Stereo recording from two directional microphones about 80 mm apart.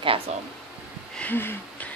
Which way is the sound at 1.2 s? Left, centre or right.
Left.